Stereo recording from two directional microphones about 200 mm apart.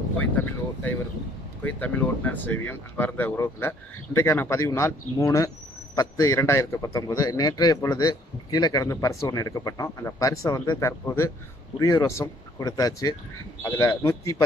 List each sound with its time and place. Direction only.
0.2 s a man's voice: 10° left (ahead or behind)